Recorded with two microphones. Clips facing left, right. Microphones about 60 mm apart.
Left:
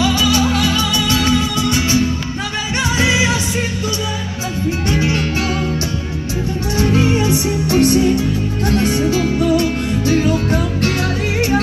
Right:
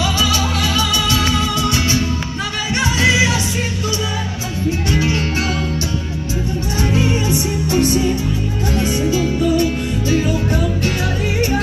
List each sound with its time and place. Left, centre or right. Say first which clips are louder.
0.1 s music: left 3 dB; left
7.7 s music: left 4 dB; left